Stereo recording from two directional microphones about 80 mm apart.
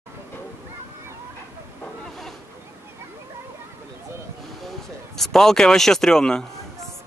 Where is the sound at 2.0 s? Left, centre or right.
Centre.